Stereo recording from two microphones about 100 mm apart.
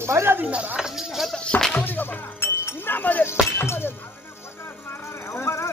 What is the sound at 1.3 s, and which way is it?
Speech, 10° left (ahead or behind).